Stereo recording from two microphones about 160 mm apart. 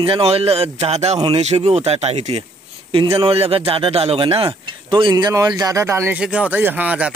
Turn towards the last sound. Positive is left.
turn(degrees=-10)  # may be behind; listen again after turning